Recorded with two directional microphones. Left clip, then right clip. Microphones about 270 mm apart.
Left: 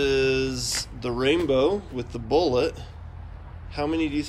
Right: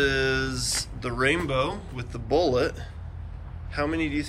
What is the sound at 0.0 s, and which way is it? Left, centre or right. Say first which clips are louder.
Speech: left 2 dB; centre.